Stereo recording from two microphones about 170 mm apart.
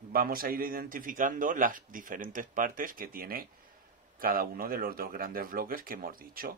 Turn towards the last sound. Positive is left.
turn(degrees=-60)  # may be behind; listen again after turning